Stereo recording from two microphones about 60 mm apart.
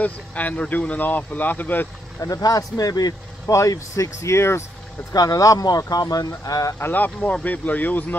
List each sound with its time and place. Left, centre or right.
0.0 s speech: left
2.1 s speech: left
5.1 s speech: left
6.8 s speech: left